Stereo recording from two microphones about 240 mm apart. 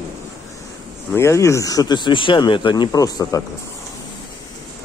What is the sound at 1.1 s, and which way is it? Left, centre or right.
Speech, centre.